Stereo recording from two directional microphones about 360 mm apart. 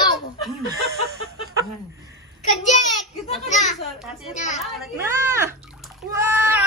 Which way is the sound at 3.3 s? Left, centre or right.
Centre.